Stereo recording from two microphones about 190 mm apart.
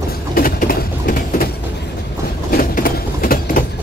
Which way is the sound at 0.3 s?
50° left (ahead or behind).